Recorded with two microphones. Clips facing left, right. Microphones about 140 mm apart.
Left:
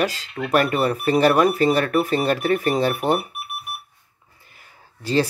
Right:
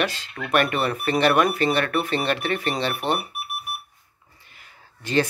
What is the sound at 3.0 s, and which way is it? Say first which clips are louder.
Speech: left 3 dB; 10° left (ahead or behind).